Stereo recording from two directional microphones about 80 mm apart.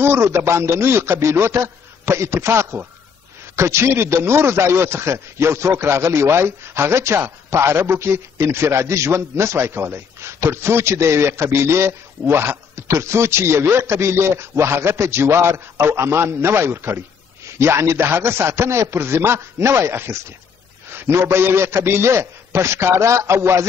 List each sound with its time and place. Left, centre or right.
0.0 s a man's voice: right